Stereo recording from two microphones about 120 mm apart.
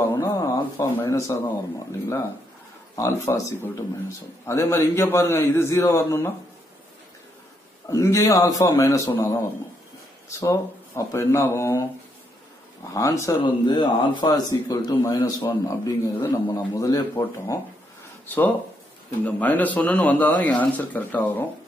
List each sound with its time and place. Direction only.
0.1 s a man's voice: 25° left (ahead or behind)
3.0 s a man's voice: 25° left (ahead or behind)
7.9 s a man's voice: 25° left (ahead or behind)
12.9 s a man's voice: 25° left (ahead or behind)
13.4 s a man's voice: 40° left (ahead or behind)
14.3 s a man's voice: 30° left (ahead or behind)
18.2 s speech: 15° left (ahead or behind)